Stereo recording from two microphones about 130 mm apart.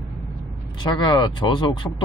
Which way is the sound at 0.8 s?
35° left (ahead or behind).